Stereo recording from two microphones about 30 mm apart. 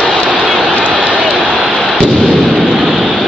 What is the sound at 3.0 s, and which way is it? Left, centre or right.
Vehicle, right.